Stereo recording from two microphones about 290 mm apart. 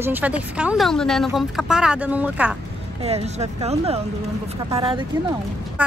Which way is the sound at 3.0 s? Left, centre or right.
Right.